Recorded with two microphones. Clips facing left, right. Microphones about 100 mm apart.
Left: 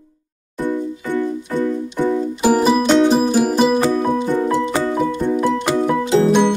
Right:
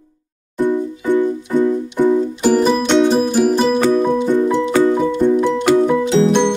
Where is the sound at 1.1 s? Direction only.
15° right (ahead or behind).